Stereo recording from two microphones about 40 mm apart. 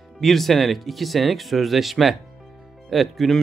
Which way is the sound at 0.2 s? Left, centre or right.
Centre.